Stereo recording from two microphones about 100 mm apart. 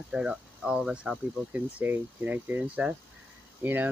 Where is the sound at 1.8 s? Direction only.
15° right (ahead or behind).